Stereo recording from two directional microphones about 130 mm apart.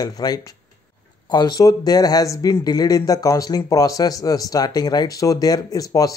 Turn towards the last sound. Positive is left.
turn(degrees=30)  # may be behind; listen again after turning